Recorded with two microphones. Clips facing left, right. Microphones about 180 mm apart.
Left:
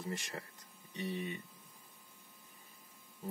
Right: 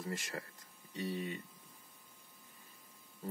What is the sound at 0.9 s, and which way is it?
Speech, 20° left (ahead or behind).